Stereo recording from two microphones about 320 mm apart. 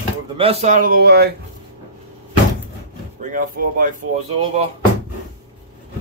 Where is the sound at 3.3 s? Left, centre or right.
Right.